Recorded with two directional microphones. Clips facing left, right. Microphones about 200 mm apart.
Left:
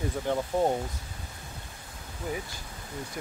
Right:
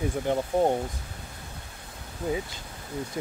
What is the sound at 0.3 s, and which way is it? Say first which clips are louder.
Speech: right 2 dB; 20° right (ahead or behind).